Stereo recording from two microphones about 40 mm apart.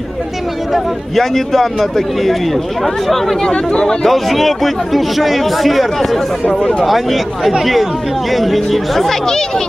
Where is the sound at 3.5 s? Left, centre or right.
Left.